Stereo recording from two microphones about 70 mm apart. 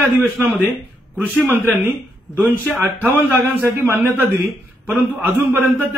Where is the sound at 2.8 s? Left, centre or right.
Right.